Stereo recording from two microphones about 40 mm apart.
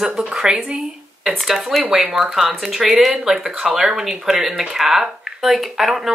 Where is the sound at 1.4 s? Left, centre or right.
Centre.